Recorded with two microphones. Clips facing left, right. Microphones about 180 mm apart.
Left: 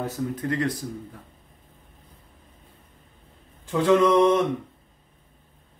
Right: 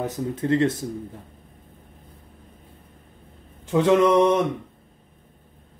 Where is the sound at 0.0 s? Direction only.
20° right (ahead or behind).